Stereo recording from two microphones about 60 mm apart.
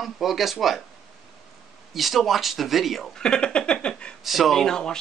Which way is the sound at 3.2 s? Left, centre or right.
Centre.